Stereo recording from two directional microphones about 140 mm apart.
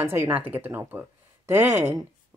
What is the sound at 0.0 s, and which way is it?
Speech, 15° right (ahead or behind).